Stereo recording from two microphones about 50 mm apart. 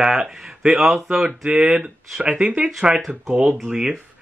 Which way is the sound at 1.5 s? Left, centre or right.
Right.